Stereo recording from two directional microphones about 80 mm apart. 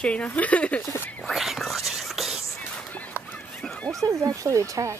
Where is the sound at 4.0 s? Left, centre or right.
Right.